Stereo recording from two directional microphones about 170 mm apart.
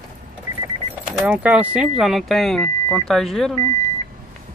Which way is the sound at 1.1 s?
5° right (ahead or behind).